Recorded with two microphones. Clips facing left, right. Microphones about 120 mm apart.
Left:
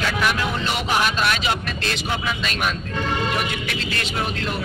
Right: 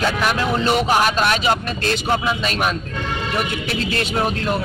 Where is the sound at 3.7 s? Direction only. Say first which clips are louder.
Right 5 dB; 35° right (ahead or behind).